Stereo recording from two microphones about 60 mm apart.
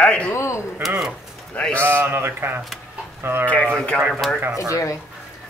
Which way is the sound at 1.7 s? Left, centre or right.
Right.